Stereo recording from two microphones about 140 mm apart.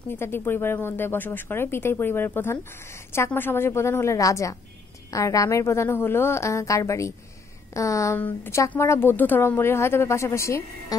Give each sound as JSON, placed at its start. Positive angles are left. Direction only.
{"t": 0.1, "sound": "a woman's voice", "side_deg": 15}